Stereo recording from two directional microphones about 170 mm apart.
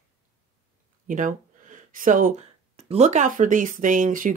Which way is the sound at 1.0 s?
50° right (ahead or behind).